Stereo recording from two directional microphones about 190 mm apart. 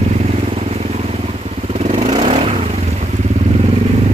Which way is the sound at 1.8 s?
30° right (ahead or behind).